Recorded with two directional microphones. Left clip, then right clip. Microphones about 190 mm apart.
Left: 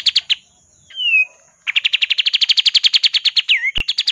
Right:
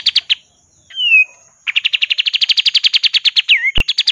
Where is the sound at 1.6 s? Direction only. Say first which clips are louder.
Right 1 dB; centre (ahead or behind).